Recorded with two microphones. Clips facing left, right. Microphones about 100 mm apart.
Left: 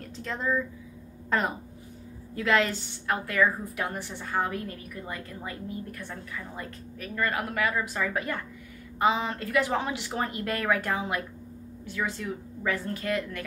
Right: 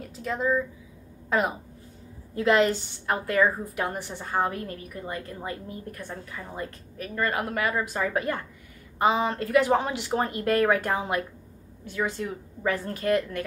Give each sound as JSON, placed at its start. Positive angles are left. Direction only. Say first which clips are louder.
{"t": 0.0, "sound": "a woman's voice", "louder": "right 4 dB", "side_deg": -5}
{"t": 2.3, "sound": "a woman's voice", "louder": "right 4 dB", "side_deg": -30}